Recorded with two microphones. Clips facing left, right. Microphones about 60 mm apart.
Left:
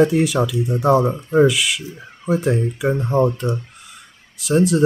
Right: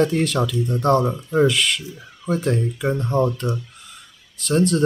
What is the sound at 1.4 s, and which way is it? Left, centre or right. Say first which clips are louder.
Speech: left 2 dB; centre.